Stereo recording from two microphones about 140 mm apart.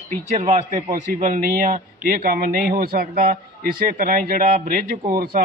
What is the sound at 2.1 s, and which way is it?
A man's voice, 85° right.